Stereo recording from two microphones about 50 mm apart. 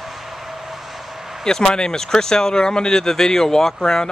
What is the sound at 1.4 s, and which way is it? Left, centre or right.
Speech, centre.